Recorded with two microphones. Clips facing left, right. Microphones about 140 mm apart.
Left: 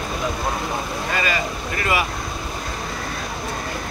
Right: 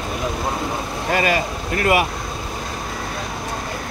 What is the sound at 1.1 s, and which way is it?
Speech, 60° right (ahead or behind).